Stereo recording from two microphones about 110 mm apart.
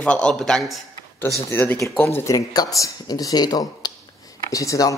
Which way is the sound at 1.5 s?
15° left (ahead or behind).